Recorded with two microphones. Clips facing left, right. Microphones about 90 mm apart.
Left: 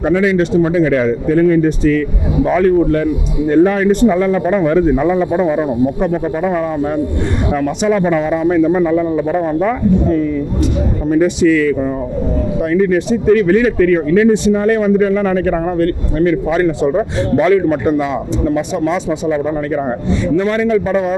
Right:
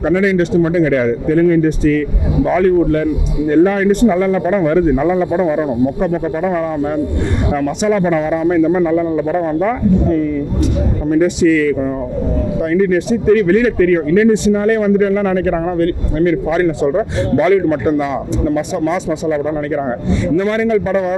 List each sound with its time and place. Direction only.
0.0 s speech: 25° left (ahead or behind)
12.7 s speech: 25° left (ahead or behind)